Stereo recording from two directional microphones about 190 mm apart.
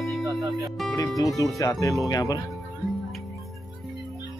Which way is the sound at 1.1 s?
Centre (ahead or behind).